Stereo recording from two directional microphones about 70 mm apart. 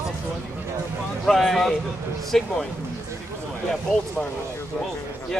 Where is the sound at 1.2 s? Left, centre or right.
Centre.